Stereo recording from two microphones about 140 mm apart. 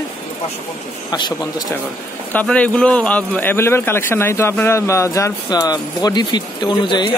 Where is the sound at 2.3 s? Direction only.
10° left (ahead or behind).